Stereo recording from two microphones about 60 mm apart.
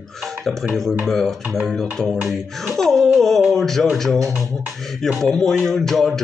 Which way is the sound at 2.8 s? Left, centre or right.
Centre.